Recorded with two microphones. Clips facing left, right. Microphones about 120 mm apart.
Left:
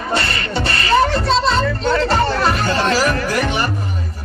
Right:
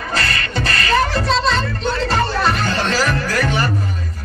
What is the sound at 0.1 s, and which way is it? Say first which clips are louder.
Beatboxing: left 2 dB; 25° left (ahead or behind).